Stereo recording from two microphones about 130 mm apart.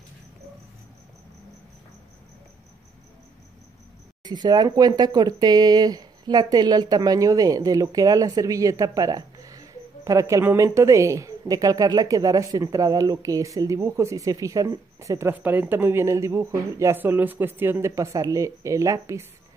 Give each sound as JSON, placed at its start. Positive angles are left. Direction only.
{"t": 4.2, "sound": "speech", "side_deg": -35}